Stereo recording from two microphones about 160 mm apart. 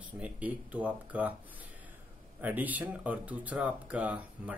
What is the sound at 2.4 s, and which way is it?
Speech, 10° right (ahead or behind).